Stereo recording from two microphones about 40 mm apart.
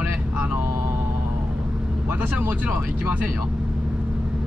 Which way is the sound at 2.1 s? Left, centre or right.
Right.